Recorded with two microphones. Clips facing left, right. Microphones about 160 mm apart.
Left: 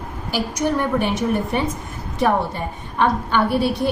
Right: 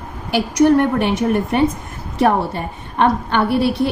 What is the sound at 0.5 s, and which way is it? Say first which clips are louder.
Speech: right 8 dB; 60° right (ahead or behind).